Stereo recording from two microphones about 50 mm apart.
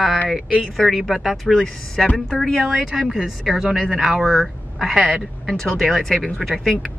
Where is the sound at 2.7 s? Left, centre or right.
Centre.